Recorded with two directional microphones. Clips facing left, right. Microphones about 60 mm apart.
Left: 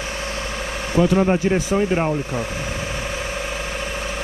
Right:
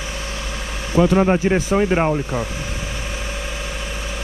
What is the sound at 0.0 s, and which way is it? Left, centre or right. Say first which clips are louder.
Vehicle: left 2 dB; left.